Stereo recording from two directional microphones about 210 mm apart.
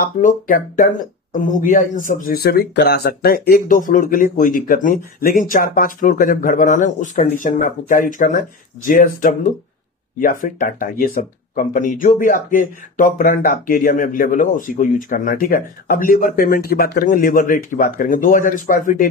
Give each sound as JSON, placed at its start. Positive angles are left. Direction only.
{"t": 0.0, "sound": "speech", "side_deg": 40}